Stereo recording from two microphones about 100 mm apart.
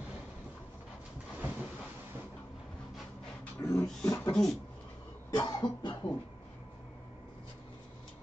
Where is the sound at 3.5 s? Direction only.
30° left (ahead or behind).